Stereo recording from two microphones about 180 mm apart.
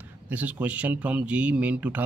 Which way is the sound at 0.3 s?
10° right (ahead or behind).